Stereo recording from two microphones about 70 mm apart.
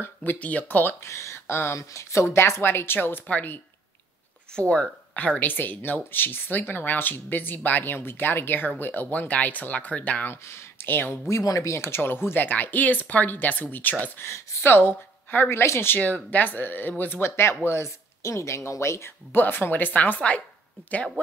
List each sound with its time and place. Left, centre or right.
0.0 s speech: left
1.0 s speech: left; by 10.3 s centre
10.3 s speech: left
11.2 s speech: left
14.2 s speech: left
14.7 s speech: left
16.0 s speech: left
19.3 s speech: left